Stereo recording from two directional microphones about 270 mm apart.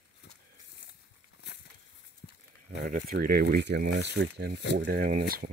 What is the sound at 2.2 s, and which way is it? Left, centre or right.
Livestock, left.